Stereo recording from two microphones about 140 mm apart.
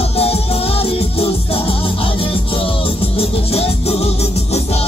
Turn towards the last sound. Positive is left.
turn(degrees=45)  # may be behind; listen again after turning